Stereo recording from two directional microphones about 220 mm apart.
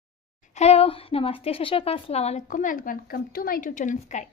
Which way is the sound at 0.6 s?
25° left (ahead or behind).